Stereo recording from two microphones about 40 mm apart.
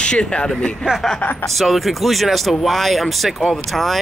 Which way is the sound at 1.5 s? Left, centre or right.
Centre.